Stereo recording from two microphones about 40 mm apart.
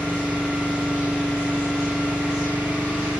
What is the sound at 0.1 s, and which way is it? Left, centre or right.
Vehicle, right.